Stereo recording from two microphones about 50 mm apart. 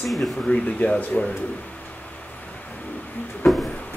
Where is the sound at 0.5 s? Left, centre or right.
Left.